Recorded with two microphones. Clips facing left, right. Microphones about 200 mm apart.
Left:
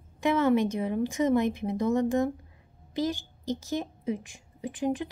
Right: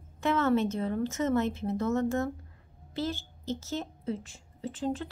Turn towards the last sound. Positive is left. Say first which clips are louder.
# left 3 dB
turn(degrees=15)  # may be behind; listen again after turning